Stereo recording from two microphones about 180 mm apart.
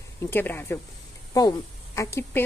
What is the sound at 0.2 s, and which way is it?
Speech, 10° left (ahead or behind).